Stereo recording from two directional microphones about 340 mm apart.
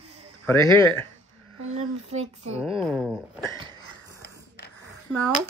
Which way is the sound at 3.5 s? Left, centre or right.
Centre.